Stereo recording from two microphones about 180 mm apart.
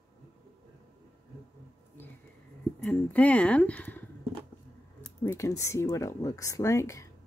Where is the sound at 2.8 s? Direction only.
5° left (ahead or behind).